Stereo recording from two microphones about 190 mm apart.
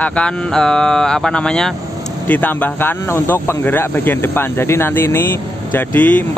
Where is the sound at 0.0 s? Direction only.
5° left (ahead or behind).